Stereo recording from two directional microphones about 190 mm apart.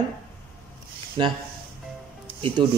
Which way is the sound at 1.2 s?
25° right (ahead or behind).